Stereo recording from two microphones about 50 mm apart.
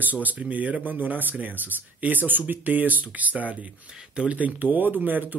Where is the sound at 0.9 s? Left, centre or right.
Right.